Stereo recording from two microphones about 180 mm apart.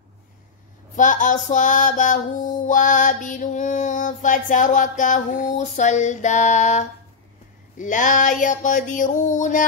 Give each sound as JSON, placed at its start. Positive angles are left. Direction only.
{"t": 0.9, "sound": "music", "side_deg": 45}